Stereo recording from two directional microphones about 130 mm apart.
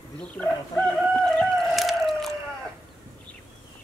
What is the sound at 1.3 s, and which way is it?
Chicken, centre (ahead or behind).